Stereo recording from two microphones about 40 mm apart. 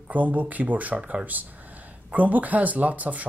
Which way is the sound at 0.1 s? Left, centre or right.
Right.